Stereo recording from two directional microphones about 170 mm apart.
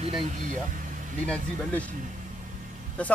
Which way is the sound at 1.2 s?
5° left (ahead or behind).